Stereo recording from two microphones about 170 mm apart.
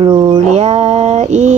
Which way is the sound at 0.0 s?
25° right (ahead or behind).